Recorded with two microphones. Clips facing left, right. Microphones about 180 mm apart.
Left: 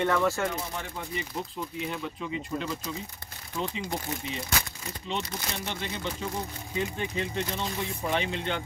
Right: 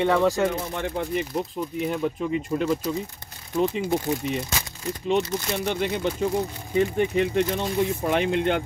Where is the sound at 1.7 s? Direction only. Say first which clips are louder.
Right 10 dB; 50° right (ahead or behind).